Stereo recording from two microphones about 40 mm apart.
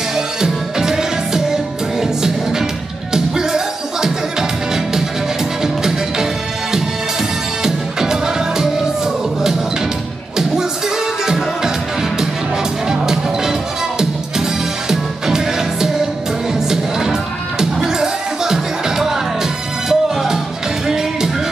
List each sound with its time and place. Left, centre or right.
0.1 s music: centre
7.6 s music: centre
11.2 s music: centre
12.8 s music: centre